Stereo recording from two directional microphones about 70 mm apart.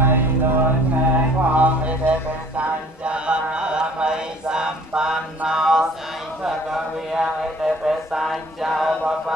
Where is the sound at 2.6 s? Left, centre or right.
Centre.